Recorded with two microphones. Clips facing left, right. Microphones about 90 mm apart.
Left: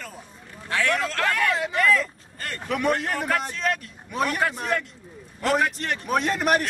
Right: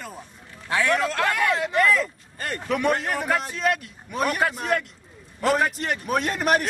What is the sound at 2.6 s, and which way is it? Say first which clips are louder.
A man's voice: right 1 dB; centre (ahead or behind).